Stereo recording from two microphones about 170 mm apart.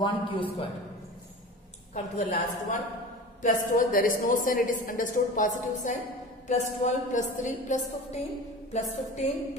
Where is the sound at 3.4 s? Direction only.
55° left (ahead or behind).